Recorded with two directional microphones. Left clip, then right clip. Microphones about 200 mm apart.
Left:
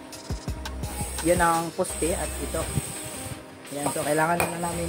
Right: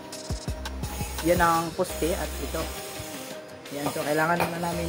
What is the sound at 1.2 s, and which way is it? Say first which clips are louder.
Speech: even; centre (ahead or behind).